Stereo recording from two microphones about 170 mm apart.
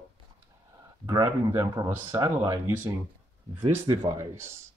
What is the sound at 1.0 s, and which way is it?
Speech, 20° right (ahead or behind).